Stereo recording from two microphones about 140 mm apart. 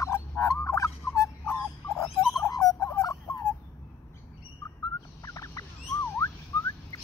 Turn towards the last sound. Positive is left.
turn(degrees=20)  # may be behind; listen again after turning